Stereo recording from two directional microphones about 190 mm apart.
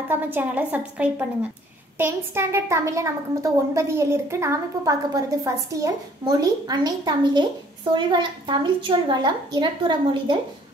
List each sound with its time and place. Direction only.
0.1 s a woman's voice: 10° right (ahead or behind)